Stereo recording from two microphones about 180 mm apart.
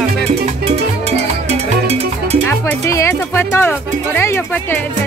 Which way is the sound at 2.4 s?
15° left (ahead or behind).